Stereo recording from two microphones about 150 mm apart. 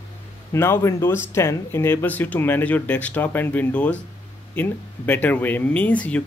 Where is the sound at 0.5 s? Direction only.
15° left (ahead or behind).